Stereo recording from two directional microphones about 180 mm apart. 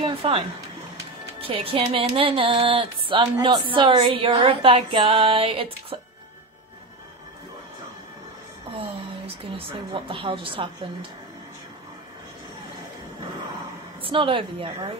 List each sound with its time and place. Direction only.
0.0 s speech: 30° right (ahead or behind)
1.4 s music: 30° right (ahead or behind)
8.7 s music: 30° right (ahead or behind)
14.0 s music: 30° right (ahead or behind)